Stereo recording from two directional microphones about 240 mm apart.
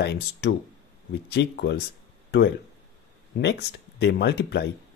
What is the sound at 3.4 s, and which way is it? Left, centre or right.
Speech, left.